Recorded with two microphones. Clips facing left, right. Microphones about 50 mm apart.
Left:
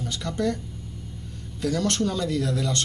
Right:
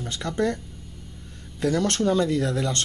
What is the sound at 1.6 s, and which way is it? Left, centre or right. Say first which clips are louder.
Speech: right 2 dB; right.